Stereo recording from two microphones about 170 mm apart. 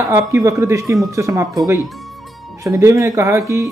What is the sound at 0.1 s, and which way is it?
Speech, 15° right (ahead or behind).